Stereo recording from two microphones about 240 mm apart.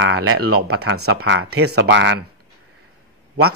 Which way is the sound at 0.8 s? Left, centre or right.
Right.